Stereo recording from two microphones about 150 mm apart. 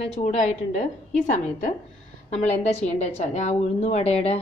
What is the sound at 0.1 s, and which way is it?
A woman's voice, 45° left (ahead or behind).